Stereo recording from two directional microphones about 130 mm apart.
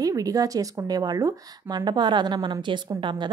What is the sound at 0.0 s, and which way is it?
A woman's voice, 25° right (ahead or behind).